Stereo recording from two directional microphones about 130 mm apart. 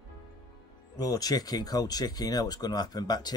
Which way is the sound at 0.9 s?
30° left (ahead or behind).